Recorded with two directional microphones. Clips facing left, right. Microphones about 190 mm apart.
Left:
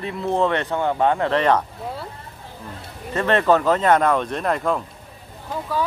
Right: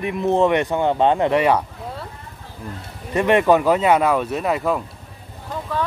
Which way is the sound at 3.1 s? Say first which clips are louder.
Right 2 dB; 15° right (ahead or behind).